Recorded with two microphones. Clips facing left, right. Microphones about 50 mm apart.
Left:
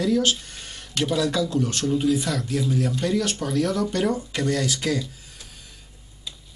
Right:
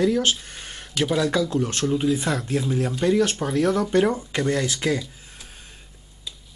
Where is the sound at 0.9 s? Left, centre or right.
Centre.